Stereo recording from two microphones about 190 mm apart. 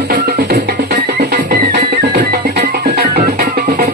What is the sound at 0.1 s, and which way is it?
Music, 50° right (ahead or behind).